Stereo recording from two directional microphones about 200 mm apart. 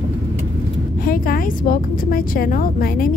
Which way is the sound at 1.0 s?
45° left (ahead or behind).